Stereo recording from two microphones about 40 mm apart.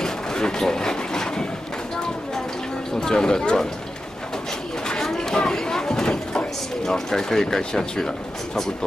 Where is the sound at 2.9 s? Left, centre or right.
Centre.